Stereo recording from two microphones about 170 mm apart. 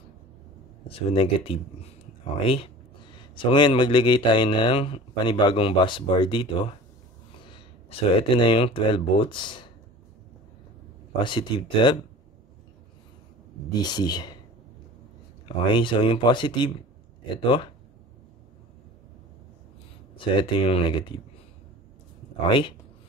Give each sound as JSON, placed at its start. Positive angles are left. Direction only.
{"t": 0.8, "sound": "speech", "side_deg": 35}
{"t": 11.2, "sound": "speech", "side_deg": 30}
{"t": 13.7, "sound": "speech", "side_deg": 25}
{"t": 15.4, "sound": "speech", "side_deg": 30}
{"t": 20.2, "sound": "speech", "side_deg": 30}